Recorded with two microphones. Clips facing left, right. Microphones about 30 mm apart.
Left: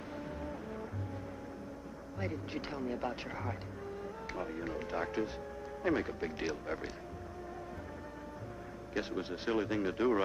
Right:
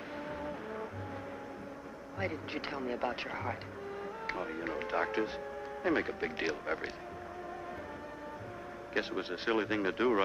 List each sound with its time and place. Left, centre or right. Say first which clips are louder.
0.4 s music: right 2 dB; right
2.1 s speech: right 2 dB; right
8.9 s speech: right 2 dB; right